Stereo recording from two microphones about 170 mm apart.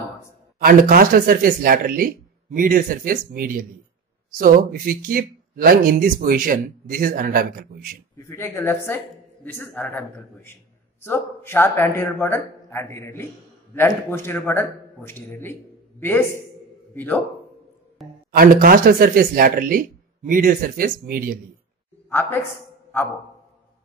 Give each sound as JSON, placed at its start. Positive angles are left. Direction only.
{"t": 0.6, "sound": "speech", "side_deg": -60}
{"t": 8.2, "sound": "a man's voice", "side_deg": 15}
{"t": 18.0, "sound": "music", "side_deg": 0}
{"t": 18.3, "sound": "speech", "side_deg": -60}